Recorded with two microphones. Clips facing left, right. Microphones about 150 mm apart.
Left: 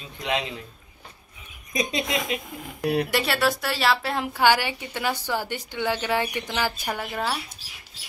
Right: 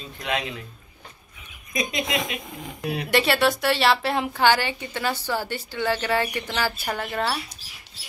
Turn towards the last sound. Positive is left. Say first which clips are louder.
# right 2 dB
turn(degrees=5)  # may be behind; listen again after turning